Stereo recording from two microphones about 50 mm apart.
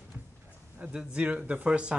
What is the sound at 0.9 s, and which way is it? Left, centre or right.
Speech, right.